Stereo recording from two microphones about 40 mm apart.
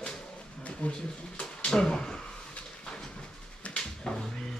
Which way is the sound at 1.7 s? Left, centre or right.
Centre.